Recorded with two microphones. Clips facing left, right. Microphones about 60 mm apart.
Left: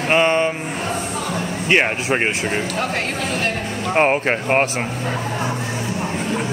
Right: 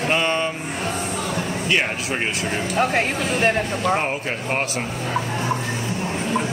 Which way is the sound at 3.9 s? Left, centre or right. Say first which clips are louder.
Left 6 dB; left.